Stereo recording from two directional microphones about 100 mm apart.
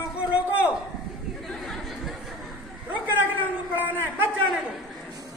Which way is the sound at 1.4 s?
Centre (ahead or behind).